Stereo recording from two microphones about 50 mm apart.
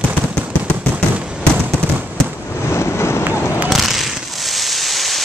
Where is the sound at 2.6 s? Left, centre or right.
Left.